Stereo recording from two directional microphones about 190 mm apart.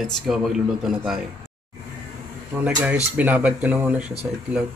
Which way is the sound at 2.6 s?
5° right (ahead or behind).